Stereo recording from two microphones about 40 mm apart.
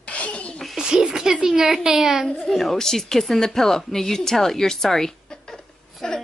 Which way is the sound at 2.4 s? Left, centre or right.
Centre.